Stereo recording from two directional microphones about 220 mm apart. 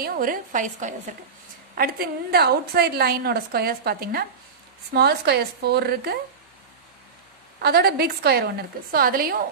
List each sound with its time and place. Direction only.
0.0 s a woman's voice: 40° right (ahead or behind)
1.8 s a woman's voice: 45° right (ahead or behind)
7.6 s a woman's voice: 45° right (ahead or behind)